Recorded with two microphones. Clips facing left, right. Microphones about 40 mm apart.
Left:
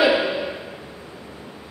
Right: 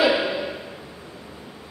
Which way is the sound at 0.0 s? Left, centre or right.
Centre.